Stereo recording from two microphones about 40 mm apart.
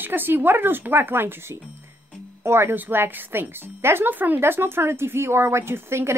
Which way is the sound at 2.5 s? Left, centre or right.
Right.